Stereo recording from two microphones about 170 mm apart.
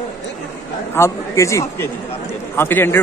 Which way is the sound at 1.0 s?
15° left (ahead or behind).